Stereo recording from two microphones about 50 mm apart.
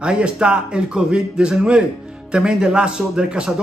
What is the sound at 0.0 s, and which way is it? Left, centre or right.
A man's voice, centre.